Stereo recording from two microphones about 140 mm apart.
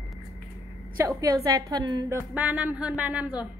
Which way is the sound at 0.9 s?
25° right (ahead or behind).